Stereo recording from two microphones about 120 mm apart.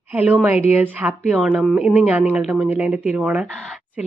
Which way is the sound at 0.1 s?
15° right (ahead or behind).